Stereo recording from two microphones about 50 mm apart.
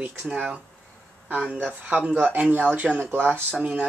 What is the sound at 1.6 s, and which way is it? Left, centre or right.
Speech, right.